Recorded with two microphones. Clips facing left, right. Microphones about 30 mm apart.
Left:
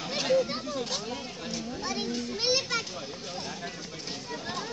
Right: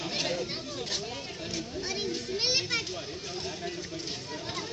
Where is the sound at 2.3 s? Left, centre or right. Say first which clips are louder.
Left 1 dB; right.